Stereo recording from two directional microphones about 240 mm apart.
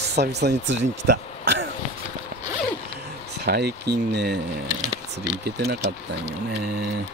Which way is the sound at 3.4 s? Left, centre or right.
Right.